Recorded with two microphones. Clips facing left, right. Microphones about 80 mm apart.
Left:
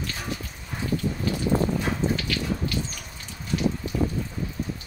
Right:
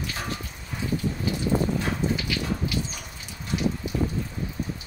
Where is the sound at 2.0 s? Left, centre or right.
Centre.